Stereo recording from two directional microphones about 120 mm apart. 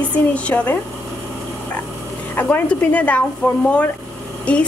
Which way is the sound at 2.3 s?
15° left (ahead or behind).